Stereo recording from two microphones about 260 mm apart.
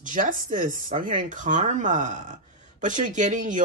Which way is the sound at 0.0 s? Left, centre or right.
Right.